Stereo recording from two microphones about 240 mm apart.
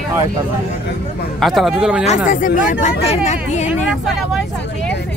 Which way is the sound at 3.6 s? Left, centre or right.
Centre.